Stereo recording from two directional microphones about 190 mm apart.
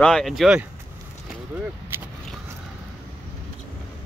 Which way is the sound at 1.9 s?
10° right (ahead or behind).